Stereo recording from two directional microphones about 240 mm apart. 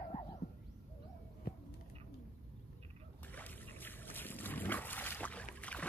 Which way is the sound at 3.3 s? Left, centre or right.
Centre.